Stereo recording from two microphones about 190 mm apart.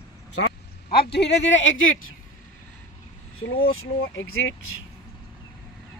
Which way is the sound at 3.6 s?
90° left.